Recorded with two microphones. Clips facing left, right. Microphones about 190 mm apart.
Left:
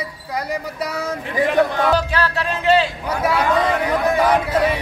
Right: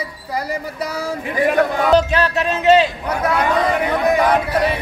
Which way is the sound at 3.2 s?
5° left (ahead or behind).